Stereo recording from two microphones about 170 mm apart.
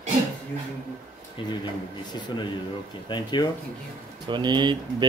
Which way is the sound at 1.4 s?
30° left (ahead or behind).